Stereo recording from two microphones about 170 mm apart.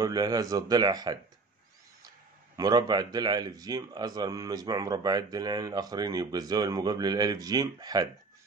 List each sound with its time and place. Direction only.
0.0 s a man's voice: 20° right (ahead or behind)
2.5 s a man's voice: 25° right (ahead or behind)